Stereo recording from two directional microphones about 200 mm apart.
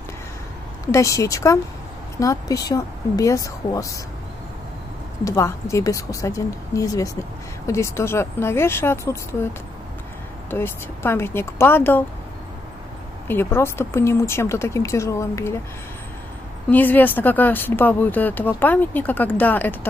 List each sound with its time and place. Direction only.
0.9 s speech: 15° left (ahead or behind)
5.2 s speech: 15° left (ahead or behind)
10.5 s speech: 10° left (ahead or behind)
13.3 s speech: 10° left (ahead or behind)
16.7 s speech: 10° left (ahead or behind)